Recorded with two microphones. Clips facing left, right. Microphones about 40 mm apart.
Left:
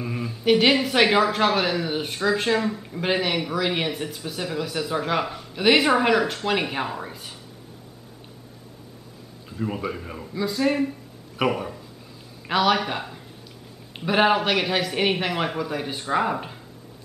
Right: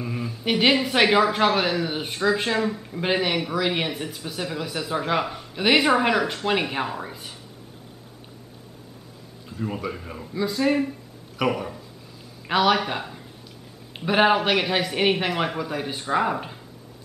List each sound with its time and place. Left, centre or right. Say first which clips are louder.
0.0 s speech: left 3 dB; centre
9.5 s a man's voice: left 1 dB; centre